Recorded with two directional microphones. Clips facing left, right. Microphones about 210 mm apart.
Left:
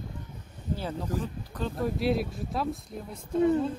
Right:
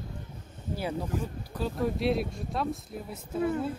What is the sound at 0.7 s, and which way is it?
Speech, 10° right (ahead or behind).